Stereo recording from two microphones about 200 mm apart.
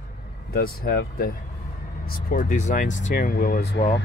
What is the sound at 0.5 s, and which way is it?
Speech, 50° left (ahead or behind).